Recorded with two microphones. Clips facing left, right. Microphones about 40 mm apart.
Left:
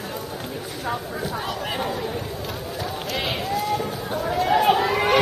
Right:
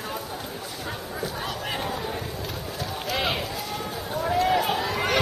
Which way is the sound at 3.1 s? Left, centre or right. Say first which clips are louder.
Left 1 dB; centre.